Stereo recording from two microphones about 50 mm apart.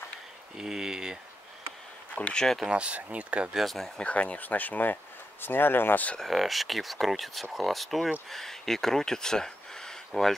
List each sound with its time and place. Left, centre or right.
0.6 s speech: centre
2.3 s speech: centre
2.6 s speech: right
3.5 s speech: centre
4.0 s speech: left
5.4 s speech: left
6.1 s speech: centre